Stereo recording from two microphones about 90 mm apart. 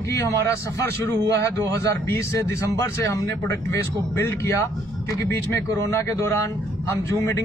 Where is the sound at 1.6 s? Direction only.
35° left (ahead or behind).